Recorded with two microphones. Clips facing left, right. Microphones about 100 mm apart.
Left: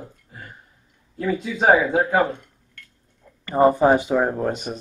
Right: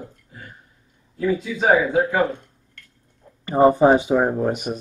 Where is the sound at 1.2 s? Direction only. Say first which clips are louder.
Right 1 dB; 40° left (ahead or behind).